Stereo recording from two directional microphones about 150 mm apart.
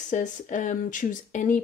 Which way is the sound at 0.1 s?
55° left (ahead or behind).